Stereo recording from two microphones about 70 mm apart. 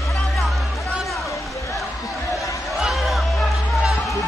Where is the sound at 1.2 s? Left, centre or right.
Left.